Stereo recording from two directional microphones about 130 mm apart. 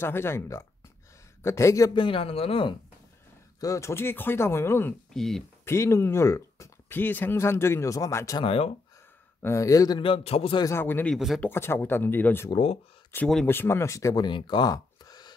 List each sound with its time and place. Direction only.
0.0 s speech: 20° left (ahead or behind)
2.0 s a man's voice: 40° left (ahead or behind)
3.6 s speech: 25° left (ahead or behind)
5.1 s speech: 5° left (ahead or behind)
5.7 s speech: 20° left (ahead or behind)
8.4 s a man's voice: 45° left (ahead or behind)
9.4 s a man's voice: 25° left (ahead or behind); by 10.6 s 45° left (ahead or behind)
10.6 s speech: 20° left (ahead or behind)
11.1 s speech: centre (ahead or behind)
11.4 s speech: 20° left (ahead or behind)
12.4 s a man's voice: 45° left (ahead or behind)
13.1 s speech: 20° left (ahead or behind)